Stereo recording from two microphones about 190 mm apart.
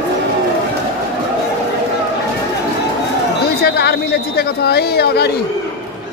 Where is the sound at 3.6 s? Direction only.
60° left (ahead or behind).